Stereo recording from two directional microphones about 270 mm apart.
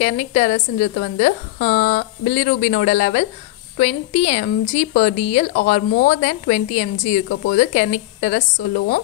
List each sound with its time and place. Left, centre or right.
0.0 s a woman's voice: left